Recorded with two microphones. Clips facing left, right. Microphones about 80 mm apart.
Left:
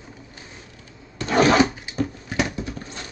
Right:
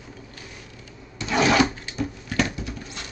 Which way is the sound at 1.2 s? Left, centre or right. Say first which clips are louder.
Left 3 dB; left.